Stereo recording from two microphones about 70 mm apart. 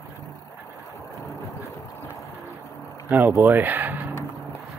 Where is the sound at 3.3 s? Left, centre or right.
Right.